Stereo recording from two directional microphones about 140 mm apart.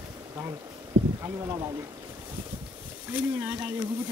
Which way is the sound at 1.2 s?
25° right (ahead or behind).